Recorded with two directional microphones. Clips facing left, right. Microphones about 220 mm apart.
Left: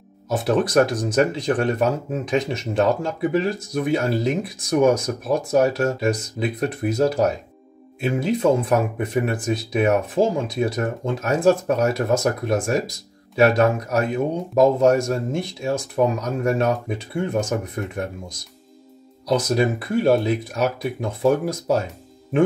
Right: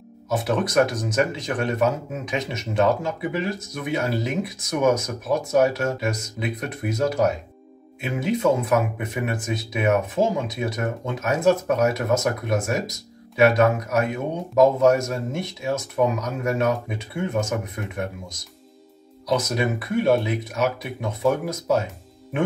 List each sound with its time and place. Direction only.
0.3 s speech: 30° left (ahead or behind)
19.2 s speech: 30° left (ahead or behind)